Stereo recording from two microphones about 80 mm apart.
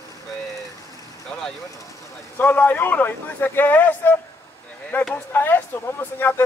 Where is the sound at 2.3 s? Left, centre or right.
Left.